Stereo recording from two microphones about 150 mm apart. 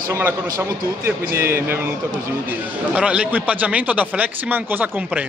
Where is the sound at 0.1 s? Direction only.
10° right (ahead or behind).